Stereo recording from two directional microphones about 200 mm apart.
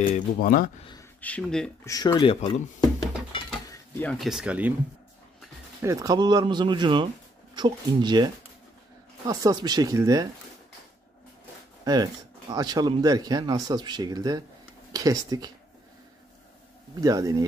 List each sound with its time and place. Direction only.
0.1 s speech: 45° left (ahead or behind)
1.2 s speech: 5° left (ahead or behind)
1.9 s speech: 15° left (ahead or behind)
3.6 s cutlery: 15° left (ahead or behind)
4.1 s speech: centre (ahead or behind)
5.8 s speech: 15° right (ahead or behind)
9.3 s speech: 15° right (ahead or behind)
11.8 s speech: 20° right (ahead or behind)
17.0 s speech: 15° right (ahead or behind)